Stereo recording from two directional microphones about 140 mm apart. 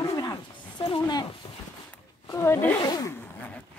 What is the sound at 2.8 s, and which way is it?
Zipper, 25° left (ahead or behind).